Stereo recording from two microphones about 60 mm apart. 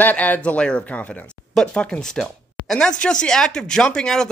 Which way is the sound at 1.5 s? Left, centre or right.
Centre.